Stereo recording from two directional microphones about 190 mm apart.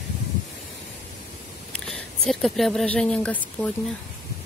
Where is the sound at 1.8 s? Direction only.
Centre (ahead or behind).